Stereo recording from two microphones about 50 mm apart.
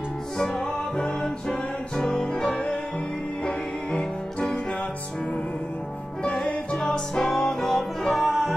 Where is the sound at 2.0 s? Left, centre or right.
Centre.